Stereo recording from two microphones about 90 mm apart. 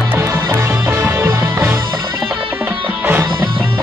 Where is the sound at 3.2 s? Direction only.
60° right (ahead or behind).